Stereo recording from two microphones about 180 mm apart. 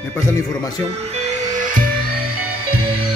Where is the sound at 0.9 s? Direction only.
35° right (ahead or behind); by 2.3 s 50° right (ahead or behind).